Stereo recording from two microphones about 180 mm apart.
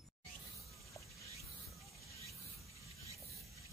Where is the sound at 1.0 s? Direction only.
20° left (ahead or behind).